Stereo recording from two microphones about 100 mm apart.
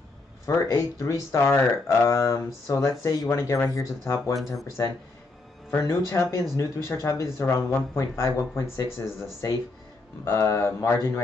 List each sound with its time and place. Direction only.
0.5 s speech: 30° left (ahead or behind)